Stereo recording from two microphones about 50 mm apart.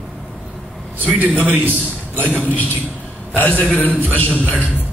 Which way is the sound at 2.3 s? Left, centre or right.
Left.